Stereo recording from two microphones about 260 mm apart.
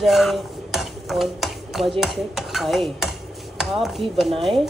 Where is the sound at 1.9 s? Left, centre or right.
Centre.